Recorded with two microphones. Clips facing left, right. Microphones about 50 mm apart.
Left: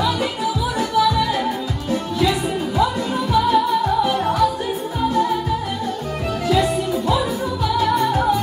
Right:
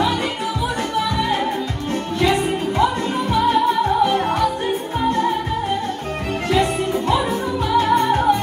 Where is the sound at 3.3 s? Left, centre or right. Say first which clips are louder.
Even; right.